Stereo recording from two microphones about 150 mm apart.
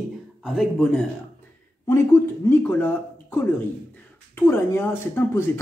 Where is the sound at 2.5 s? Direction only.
15° left (ahead or behind).